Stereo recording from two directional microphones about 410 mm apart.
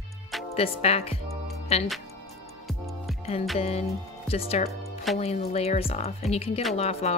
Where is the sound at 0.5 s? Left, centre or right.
Centre.